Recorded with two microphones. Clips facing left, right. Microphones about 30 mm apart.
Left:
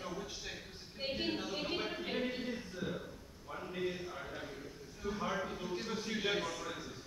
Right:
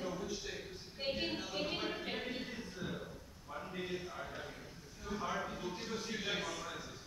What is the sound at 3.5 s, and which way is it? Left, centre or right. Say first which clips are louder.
A man's voice: left 3 dB; centre.